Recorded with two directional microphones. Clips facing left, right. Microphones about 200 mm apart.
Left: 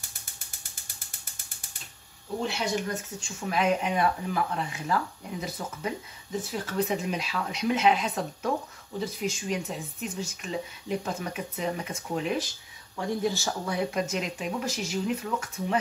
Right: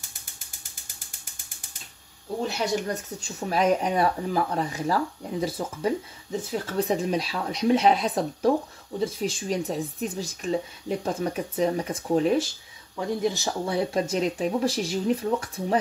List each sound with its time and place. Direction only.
2.4 s speech: 35° right (ahead or behind)
13.2 s speech: 20° right (ahead or behind)
13.7 s speech: 30° right (ahead or behind)